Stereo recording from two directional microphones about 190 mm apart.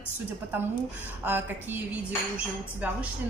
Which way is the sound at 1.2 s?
10° right (ahead or behind).